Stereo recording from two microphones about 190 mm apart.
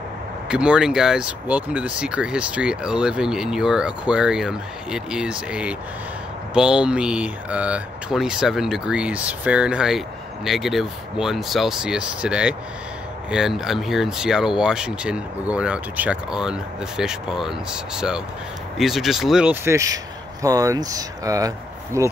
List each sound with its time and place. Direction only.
0.5 s speech: 5° right (ahead or behind)